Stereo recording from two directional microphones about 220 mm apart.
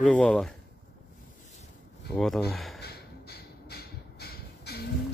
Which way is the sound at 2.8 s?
45° left (ahead or behind).